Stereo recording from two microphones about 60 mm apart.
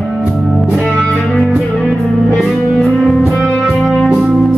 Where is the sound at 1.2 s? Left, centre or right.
Centre.